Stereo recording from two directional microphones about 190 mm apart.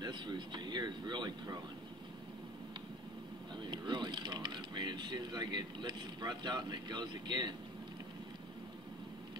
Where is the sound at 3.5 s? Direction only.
25° right (ahead or behind).